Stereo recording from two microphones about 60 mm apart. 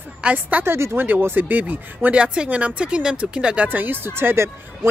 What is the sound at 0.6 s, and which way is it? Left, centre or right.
Speech, right.